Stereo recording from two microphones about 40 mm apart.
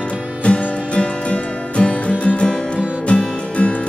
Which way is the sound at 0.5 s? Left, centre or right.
Left.